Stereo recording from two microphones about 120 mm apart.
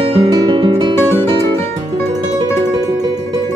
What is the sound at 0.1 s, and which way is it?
Guitar, 35° right (ahead or behind).